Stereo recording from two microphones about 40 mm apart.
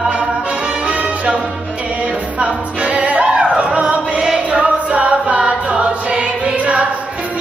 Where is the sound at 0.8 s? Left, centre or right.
Right.